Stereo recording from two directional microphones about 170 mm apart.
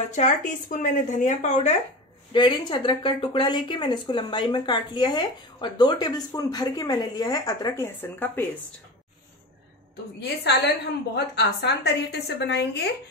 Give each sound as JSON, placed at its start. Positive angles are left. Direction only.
{"t": 0.1, "sound": "speech", "side_deg": 45}
{"t": 2.3, "sound": "speech", "side_deg": 30}
{"t": 10.2, "sound": "a woman's voice", "side_deg": 85}